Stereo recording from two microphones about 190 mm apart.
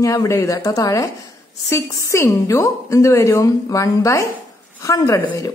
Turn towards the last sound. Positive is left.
turn(degrees=15)  # may be behind; listen again after turning